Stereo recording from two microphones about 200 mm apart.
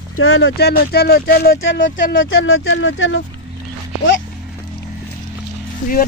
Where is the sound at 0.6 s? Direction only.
50° left (ahead or behind).